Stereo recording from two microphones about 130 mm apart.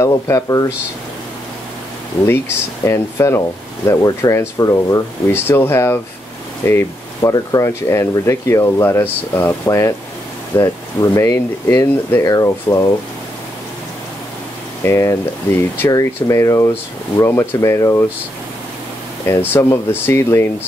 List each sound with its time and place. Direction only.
0.0 s speech: 25° left (ahead or behind)
2.2 s speech: 20° left (ahead or behind)
14.8 s speech: 20° left (ahead or behind)
19.5 s speech: 15° left (ahead or behind)